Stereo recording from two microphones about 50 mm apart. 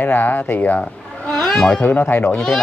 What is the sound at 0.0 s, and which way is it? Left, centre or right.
Speech, left.